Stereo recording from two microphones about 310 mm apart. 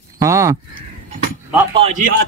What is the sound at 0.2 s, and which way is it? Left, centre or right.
Speech, centre.